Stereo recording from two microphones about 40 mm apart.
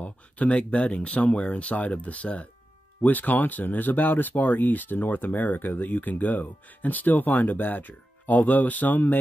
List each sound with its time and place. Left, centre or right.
0.0 s speech: left